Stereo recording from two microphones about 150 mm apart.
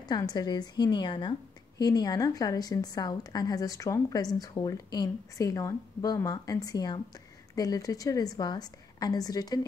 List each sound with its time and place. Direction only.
0.1 s speech: 25° left (ahead or behind)